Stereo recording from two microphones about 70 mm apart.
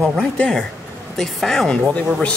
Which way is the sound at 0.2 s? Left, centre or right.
Centre.